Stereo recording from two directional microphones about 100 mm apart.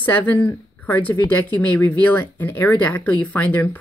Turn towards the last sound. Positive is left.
turn(degrees=15)  # may be behind; listen again after turning